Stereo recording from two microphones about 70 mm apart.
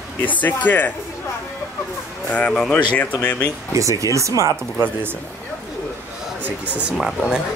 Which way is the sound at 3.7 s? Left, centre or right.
Right.